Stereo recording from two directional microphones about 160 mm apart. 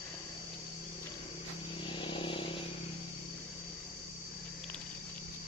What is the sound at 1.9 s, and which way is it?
Vehicle, 30° left (ahead or behind).